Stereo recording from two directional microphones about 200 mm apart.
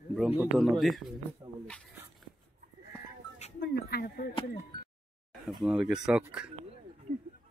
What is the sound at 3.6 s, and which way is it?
Speech, 55° left (ahead or behind).